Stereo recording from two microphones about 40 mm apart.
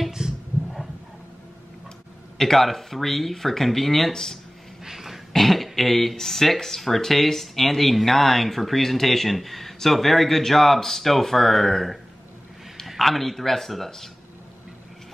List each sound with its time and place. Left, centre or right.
0.2 s a sound: centre
2.3 s speech: centre
4.8 s dog: centre
5.3 s speech: centre